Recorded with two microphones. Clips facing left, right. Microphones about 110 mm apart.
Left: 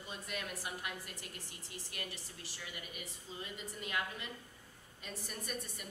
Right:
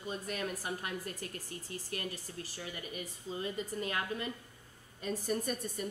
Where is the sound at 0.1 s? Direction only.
40° right (ahead or behind).